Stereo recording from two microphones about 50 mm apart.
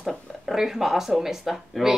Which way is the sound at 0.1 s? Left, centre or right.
Centre.